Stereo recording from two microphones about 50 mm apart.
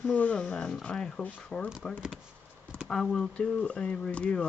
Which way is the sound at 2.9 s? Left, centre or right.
Centre.